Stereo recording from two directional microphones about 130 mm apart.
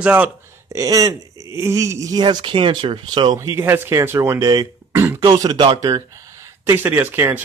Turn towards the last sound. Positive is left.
turn(degrees=-15)  # may be behind; listen again after turning